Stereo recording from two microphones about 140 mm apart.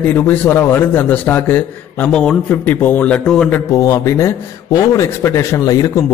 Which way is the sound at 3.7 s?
25° left (ahead or behind).